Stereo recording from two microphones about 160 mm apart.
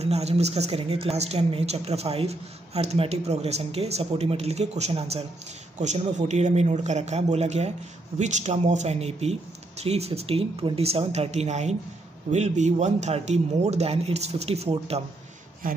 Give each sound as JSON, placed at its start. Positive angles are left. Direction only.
{"t": 0.0, "sound": "speech", "side_deg": -40}